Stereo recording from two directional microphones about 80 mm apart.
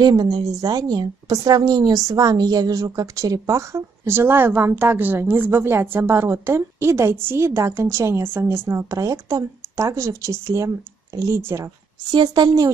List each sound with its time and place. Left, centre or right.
0.0 s a woman's voice: right
12.1 s a woman's voice: right